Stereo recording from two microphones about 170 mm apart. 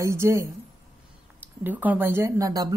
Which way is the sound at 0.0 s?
15° right (ahead or behind).